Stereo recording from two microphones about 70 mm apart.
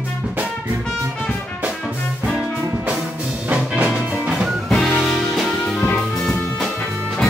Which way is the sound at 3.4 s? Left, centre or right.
Centre.